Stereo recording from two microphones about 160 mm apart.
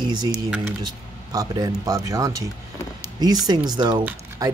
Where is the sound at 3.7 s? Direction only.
25° right (ahead or behind).